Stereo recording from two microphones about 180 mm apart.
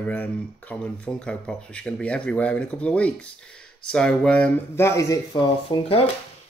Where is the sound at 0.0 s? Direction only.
5° left (ahead or behind).